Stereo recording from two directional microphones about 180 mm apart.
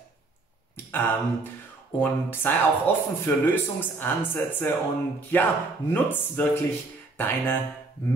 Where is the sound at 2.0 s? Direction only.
10° left (ahead or behind).